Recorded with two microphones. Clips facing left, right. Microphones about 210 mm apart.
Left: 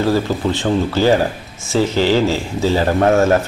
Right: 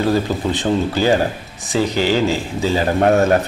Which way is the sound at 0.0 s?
20° right (ahead or behind).